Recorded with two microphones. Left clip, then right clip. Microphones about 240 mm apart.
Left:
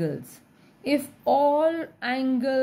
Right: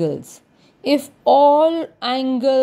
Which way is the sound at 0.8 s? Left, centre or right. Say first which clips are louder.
Right 8 dB; right.